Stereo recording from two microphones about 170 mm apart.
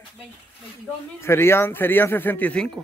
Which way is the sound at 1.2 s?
15° left (ahead or behind).